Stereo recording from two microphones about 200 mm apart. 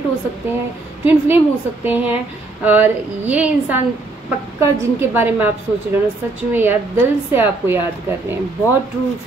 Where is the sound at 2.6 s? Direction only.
10° right (ahead or behind).